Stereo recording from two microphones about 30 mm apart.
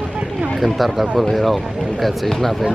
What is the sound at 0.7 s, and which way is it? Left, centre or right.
Speech, centre.